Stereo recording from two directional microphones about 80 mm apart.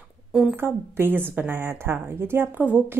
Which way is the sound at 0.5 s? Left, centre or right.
Right.